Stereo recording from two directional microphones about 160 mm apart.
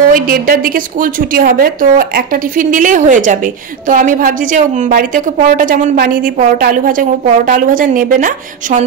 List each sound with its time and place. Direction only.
0.1 s a woman's voice: 65° right (ahead or behind)